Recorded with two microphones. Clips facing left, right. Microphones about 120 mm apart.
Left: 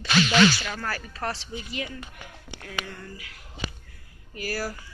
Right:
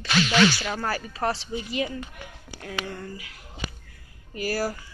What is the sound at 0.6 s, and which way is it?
A woman's voice, 20° right (ahead or behind).